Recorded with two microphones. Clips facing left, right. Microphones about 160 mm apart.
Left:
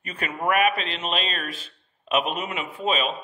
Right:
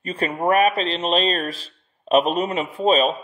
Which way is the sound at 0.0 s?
30° right (ahead or behind).